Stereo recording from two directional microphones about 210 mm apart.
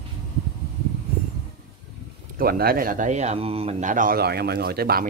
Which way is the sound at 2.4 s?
45° right (ahead or behind).